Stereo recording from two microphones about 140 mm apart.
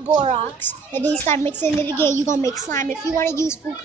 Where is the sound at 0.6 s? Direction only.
15° left (ahead or behind).